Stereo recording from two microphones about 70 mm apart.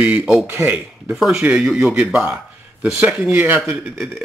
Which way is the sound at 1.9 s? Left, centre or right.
Centre.